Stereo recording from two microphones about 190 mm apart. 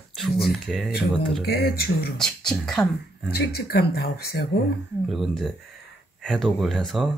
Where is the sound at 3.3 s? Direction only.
55° left (ahead or behind).